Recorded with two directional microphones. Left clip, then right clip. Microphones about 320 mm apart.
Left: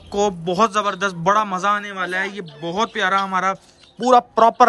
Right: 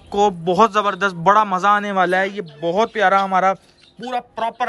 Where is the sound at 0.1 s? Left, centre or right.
Centre.